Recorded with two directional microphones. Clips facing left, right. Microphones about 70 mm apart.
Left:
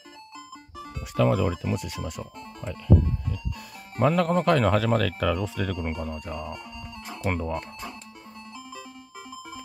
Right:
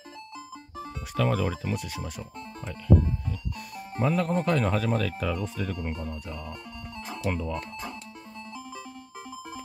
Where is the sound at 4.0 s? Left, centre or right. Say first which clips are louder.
Left 4 dB; left.